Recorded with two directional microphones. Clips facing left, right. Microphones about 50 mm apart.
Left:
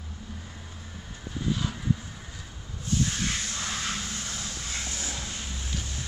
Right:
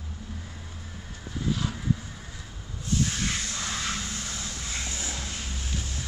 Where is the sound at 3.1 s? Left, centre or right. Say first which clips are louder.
Even; centre.